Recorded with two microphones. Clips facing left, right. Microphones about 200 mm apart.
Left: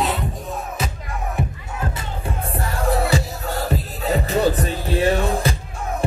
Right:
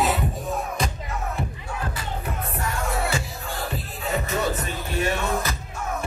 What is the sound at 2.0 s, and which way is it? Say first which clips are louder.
Music: left 2 dB; 30° left (ahead or behind).